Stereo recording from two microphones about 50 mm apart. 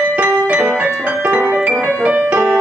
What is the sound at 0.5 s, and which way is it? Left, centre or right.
Music, right.